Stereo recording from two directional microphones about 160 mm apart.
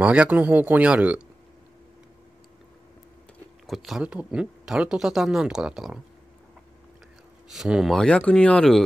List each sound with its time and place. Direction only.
0.0 s speech: 5° right (ahead or behind)
3.6 s speech: centre (ahead or behind)
7.5 s speech: 5° right (ahead or behind)